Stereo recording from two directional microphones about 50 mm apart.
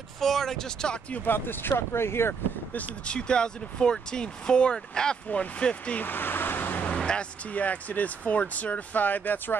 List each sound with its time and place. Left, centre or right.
0.2 s speech: centre
1.1 s speech: left
3.1 s speech: centre
5.9 s waves: left
7.0 s a sound: centre
7.5 s speech: left